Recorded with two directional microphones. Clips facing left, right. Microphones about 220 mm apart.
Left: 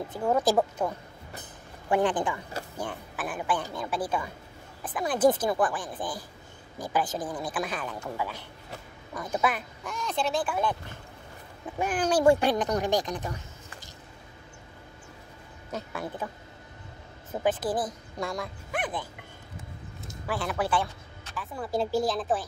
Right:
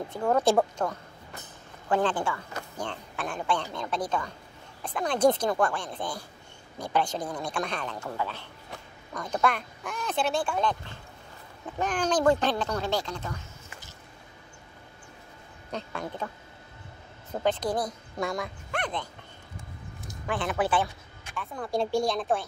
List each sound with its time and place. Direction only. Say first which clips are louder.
0.1 s speech: right 1 dB; 5° left (ahead or behind)
11.8 s speech: left 2 dB; 10° left (ahead or behind)
15.7 s speech: even; 5° left (ahead or behind)
17.3 s speech: even; 5° left (ahead or behind)
20.2 s speech: right 1 dB; centre (ahead or behind)